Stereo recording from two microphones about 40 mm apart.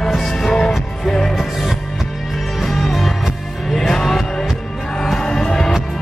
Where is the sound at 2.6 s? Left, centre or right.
Centre.